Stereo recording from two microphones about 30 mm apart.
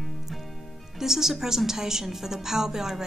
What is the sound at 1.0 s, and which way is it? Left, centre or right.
A woman's voice, centre.